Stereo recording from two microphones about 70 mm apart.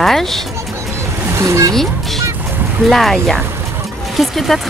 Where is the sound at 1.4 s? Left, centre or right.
Right.